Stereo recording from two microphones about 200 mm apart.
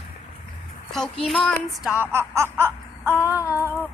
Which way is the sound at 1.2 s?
Centre (ahead or behind).